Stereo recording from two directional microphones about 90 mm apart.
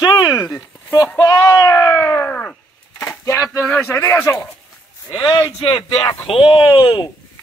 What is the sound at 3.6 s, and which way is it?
Speech, 20° left (ahead or behind).